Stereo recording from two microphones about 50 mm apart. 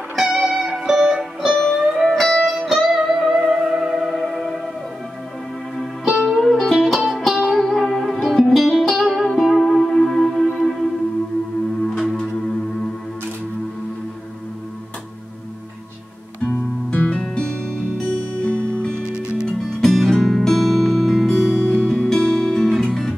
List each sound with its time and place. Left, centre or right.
0.1 s music: centre
1.9 s music: centre
5.8 s music: centre
7.0 s music: centre
7.6 s music: centre
17.1 s music: centre
18.4 s music: left
19.0 s music: left
19.4 s music: centre